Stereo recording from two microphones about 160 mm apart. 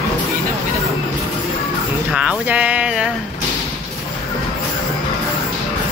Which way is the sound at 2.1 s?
10° right (ahead or behind).